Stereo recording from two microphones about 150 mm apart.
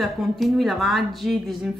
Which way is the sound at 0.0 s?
Centre (ahead or behind).